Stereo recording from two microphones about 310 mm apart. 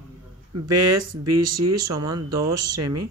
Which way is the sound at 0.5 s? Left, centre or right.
Right.